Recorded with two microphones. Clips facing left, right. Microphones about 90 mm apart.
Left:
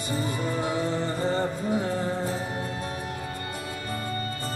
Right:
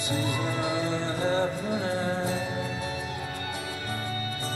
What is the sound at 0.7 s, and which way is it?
Music, 40° left (ahead or behind).